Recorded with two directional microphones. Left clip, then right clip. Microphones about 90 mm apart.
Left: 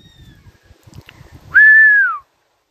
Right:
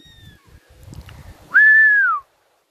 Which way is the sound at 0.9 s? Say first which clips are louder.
Even; 15° right (ahead or behind).